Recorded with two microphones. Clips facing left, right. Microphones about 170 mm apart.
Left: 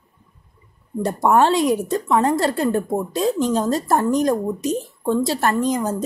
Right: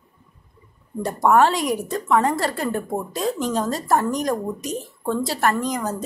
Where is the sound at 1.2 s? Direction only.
25° left (ahead or behind).